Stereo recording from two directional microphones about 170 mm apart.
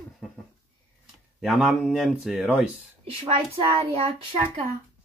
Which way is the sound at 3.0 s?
35° right (ahead or behind).